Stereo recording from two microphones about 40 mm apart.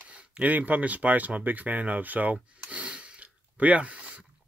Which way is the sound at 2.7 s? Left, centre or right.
Right.